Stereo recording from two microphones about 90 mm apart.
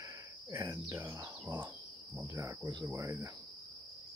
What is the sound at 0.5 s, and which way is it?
Speech, 30° right (ahead or behind).